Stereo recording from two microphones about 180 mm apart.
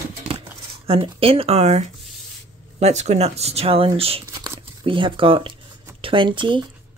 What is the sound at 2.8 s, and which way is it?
Speech, 40° right (ahead or behind).